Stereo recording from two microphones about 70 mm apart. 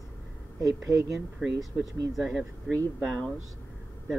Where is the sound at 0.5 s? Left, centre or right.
Right.